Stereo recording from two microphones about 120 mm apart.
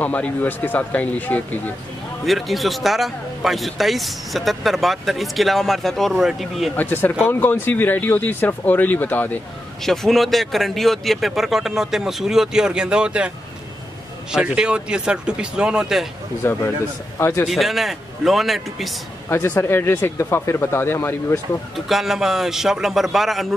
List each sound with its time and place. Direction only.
0.0 s speech: 10° left (ahead or behind)
2.2 s a man's voice: centre (ahead or behind)
6.8 s speech: 15° left (ahead or behind)
9.8 s a man's voice: centre (ahead or behind)
14.3 s speech: 10° right (ahead or behind)
16.4 s speech: 20° left (ahead or behind)
17.5 s a man's voice: centre (ahead or behind)
19.2 s speech: 15° left (ahead or behind)
21.7 s a man's voice: centre (ahead or behind)